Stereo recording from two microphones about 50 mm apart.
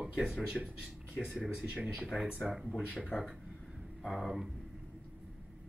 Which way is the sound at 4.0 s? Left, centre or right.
Centre.